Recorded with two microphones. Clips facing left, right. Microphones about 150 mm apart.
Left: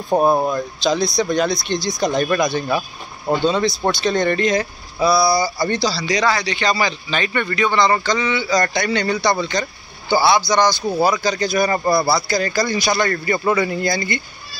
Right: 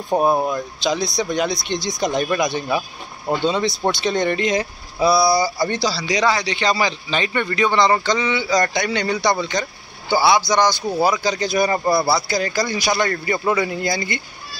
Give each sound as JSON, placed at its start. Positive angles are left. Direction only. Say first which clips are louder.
{"t": 0.1, "sound": "speech", "louder": "left 2 dB", "side_deg": -5}
{"t": 0.5, "sound": "a man's voice", "louder": "left 2 dB", "side_deg": -15}